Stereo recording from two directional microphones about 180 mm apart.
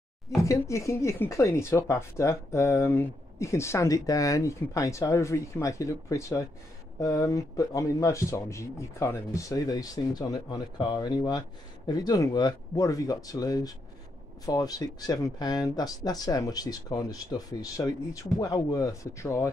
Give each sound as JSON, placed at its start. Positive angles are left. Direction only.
{"t": 0.4, "sound": "speech", "side_deg": 15}